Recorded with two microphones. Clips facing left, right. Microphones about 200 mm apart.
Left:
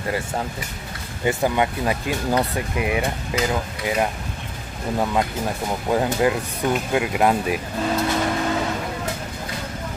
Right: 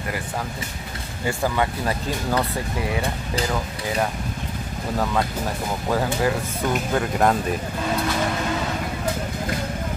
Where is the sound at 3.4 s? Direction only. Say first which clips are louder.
Left 3 dB; 30° right (ahead or behind).